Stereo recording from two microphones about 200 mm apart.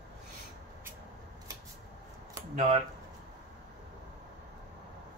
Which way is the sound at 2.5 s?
30° right (ahead or behind).